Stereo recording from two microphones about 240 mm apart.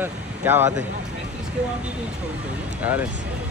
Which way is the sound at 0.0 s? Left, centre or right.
Centre.